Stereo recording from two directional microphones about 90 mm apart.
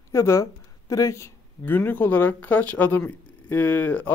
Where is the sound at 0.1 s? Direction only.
30° left (ahead or behind).